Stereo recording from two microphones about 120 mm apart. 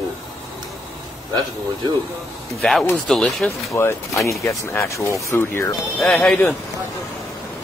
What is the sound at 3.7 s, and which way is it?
Speech, 25° left (ahead or behind).